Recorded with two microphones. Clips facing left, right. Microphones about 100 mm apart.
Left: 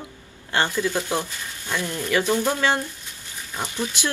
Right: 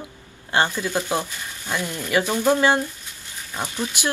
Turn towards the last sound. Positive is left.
turn(degrees=-15)  # may be behind; listen again after turning